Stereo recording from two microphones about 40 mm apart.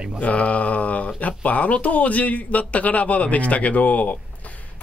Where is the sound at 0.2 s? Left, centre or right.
Left.